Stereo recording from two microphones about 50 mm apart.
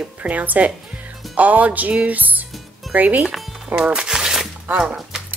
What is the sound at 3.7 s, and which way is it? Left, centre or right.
Speech, centre.